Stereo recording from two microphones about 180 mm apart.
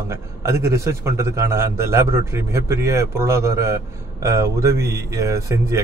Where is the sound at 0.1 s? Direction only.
15° right (ahead or behind).